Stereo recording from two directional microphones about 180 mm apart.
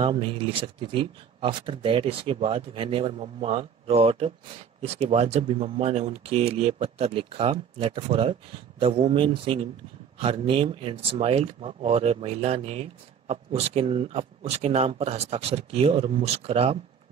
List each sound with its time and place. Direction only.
0.0 s speech: 30° right (ahead or behind)